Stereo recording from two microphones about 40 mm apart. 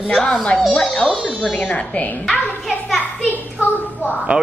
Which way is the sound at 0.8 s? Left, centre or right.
Centre.